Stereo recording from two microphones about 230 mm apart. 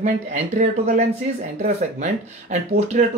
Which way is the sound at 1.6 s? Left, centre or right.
Right.